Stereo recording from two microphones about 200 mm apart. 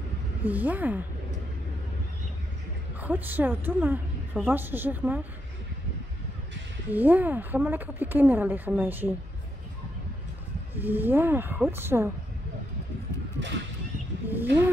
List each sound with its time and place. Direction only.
0.4 s a woman's voice: 10° right (ahead or behind)
3.0 s a woman's voice: 10° right (ahead or behind)
6.9 s a woman's voice: 10° right (ahead or behind)
10.7 s a woman's voice: 10° right (ahead or behind)
13.4 s a sound: 65° right (ahead or behind)
14.2 s a sound: 10° right (ahead or behind)